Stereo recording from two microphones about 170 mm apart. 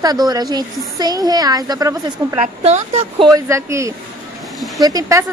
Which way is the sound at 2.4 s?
40° right (ahead or behind).